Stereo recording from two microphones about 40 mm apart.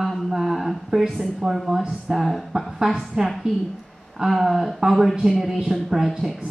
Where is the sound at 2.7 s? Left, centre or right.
Centre.